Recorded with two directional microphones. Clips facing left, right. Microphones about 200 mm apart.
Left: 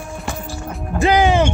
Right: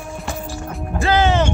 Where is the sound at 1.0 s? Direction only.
15° left (ahead or behind).